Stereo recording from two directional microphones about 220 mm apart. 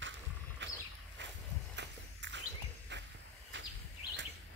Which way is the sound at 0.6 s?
55° right (ahead or behind).